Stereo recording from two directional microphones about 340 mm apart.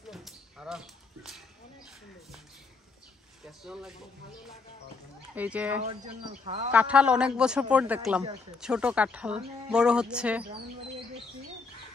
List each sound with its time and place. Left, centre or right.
0.1 s a sound: centre
3.6 s a man's voice: centre
5.3 s a man's voice: centre
6.4 s speech: right
6.7 s a man's voice: centre